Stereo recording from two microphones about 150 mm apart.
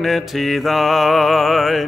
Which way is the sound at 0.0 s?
Centre (ahead or behind).